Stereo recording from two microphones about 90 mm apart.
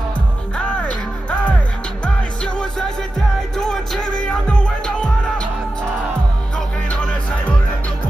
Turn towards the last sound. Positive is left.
turn(degrees=10)  # may be behind; listen again after turning